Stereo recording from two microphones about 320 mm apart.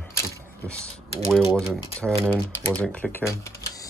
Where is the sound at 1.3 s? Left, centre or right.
Centre.